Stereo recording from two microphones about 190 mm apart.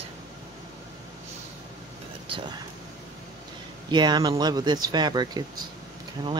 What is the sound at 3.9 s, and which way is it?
Speech, 20° right (ahead or behind).